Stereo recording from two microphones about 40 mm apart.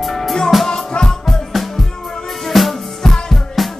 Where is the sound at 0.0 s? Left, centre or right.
Centre.